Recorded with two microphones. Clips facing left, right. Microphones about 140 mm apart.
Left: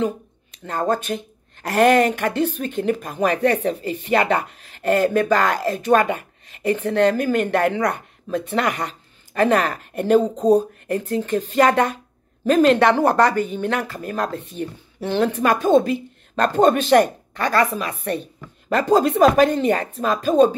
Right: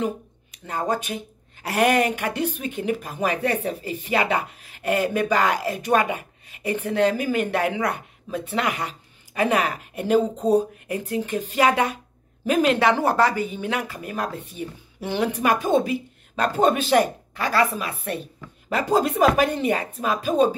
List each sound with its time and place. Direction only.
0.0 s a sound: 10° right (ahead or behind)
0.8 s speech: 10° right (ahead or behind)
8.5 s speech: 45° left (ahead or behind)
8.8 s a woman's voice: 10° right (ahead or behind)